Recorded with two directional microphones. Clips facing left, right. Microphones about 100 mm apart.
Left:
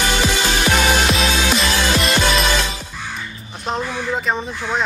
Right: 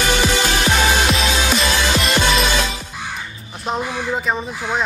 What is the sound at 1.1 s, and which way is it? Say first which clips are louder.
Music: even; centre (ahead or behind).